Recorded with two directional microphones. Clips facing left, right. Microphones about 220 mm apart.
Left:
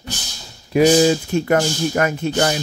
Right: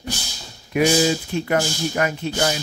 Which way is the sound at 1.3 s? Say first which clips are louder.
Left 4 dB; 45° left (ahead or behind).